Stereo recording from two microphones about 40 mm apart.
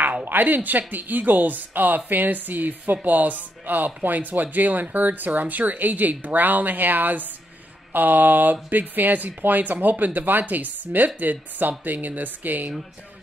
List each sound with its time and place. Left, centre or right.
0.2 s speech: right